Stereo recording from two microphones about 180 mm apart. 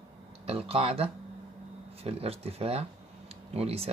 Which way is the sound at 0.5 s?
30° right (ahead or behind).